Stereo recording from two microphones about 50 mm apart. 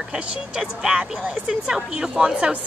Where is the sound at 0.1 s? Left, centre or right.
Centre.